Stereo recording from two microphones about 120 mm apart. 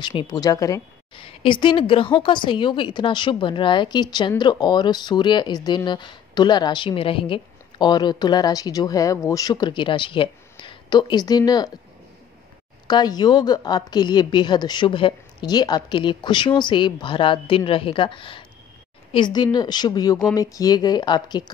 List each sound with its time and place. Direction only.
0.0 s speech: 40° left (ahead or behind)
0.4 s speech: 30° left (ahead or behind)
1.1 s speech: 45° left (ahead or behind)
12.8 s speech: 35° left (ahead or behind)